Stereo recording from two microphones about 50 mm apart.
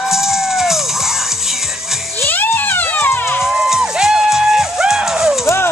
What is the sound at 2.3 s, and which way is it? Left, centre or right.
Music, left.